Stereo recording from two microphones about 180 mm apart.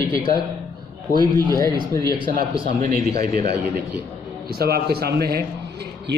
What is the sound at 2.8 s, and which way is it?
Speech, 45° right (ahead or behind).